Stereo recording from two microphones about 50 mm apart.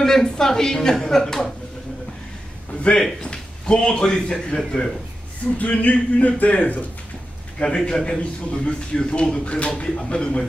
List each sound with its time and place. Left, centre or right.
0.0 s a woman's voice: centre
2.8 s a man's voice: centre
5.6 s speech: left
7.5 s speech: centre